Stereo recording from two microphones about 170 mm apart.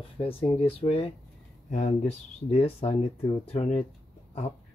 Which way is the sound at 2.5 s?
35° left (ahead or behind).